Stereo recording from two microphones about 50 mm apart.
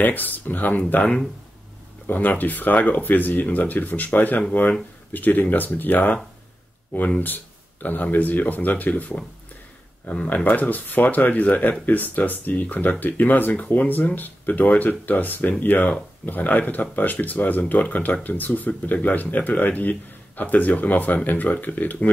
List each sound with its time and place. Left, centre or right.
0.0 s speech: left
2.0 s speech: left
7.2 s speech: left
10.3 s speech: left